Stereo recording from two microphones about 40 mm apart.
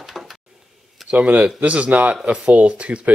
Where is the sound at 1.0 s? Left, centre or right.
Right.